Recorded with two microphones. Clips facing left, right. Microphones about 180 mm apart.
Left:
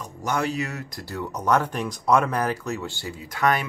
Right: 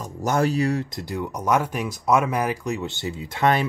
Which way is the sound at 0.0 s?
40° right (ahead or behind).